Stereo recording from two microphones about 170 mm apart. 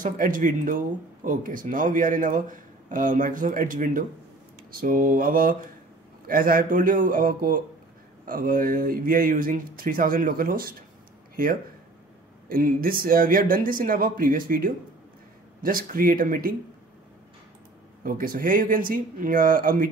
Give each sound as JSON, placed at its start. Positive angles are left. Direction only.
{"t": 0.0, "sound": "speech", "side_deg": -50}
{"t": 18.0, "sound": "speech", "side_deg": -55}